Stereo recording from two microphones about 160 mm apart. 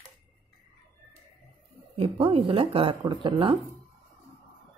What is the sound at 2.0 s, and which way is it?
Speech, 35° right (ahead or behind).